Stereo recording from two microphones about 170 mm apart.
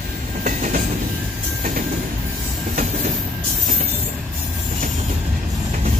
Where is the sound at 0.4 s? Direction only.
50° right (ahead or behind).